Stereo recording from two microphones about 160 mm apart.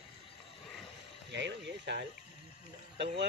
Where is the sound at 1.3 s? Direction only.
90° right.